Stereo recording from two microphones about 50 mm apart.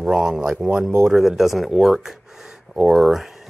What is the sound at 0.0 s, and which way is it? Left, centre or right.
Speech, centre.